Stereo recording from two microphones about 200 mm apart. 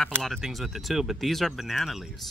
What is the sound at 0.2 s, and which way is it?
Speech, centre (ahead or behind).